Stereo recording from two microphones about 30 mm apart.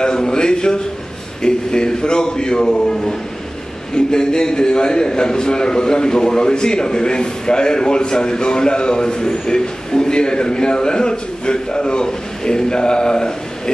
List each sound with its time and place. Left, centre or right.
0.0 s a man's voice: left